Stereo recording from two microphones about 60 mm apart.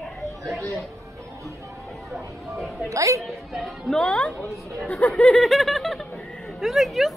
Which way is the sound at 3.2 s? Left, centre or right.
Centre.